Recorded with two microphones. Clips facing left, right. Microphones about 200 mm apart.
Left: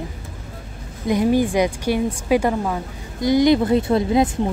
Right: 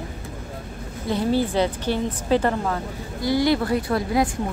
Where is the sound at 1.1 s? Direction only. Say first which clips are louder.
Left 4 dB; 15° left (ahead or behind).